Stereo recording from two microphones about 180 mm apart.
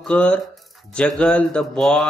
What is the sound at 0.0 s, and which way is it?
Speech, 5° left (ahead or behind).